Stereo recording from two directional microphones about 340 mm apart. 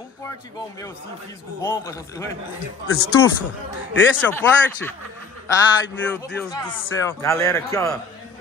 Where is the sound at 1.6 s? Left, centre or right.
Centre.